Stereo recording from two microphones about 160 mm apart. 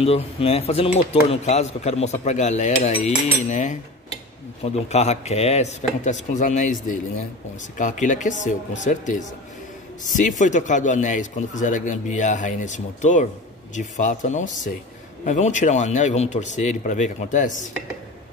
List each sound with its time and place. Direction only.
0.0 s speech: 40° left (ahead or behind)